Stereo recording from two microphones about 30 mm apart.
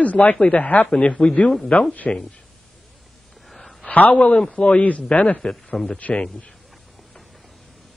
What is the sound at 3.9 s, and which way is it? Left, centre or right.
Speech, left.